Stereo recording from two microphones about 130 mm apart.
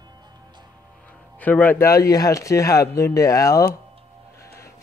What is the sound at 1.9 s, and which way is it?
Speech, 25° left (ahead or behind).